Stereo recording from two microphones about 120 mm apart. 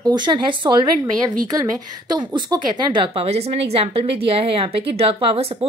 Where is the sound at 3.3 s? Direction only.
60° right (ahead or behind).